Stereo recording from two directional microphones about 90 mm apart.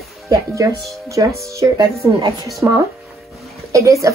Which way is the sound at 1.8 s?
50° right (ahead or behind).